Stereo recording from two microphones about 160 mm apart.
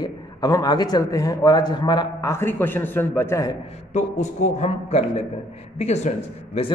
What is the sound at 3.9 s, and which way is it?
A man's voice, 50° left (ahead or behind).